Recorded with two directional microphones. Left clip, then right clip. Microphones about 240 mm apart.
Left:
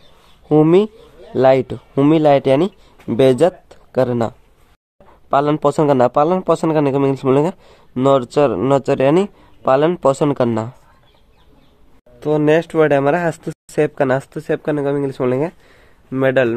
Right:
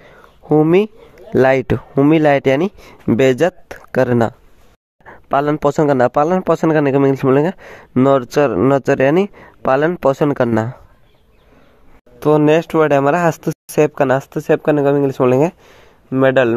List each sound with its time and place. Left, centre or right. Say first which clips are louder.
0.5 s speech: even; centre
12.2 s speech: right 2 dB; centre